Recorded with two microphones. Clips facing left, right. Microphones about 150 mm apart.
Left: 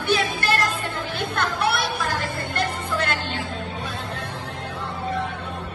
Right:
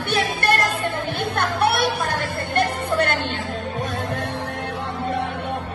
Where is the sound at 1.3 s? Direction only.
55° right (ahead or behind).